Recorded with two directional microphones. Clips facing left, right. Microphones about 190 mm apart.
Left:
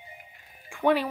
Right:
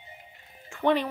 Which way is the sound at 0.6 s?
10° left (ahead or behind).